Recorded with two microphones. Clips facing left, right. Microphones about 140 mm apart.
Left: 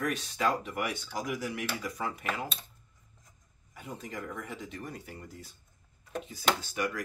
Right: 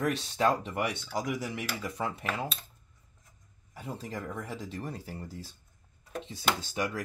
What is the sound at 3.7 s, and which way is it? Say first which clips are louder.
Speech: right 2 dB; 35° right (ahead or behind).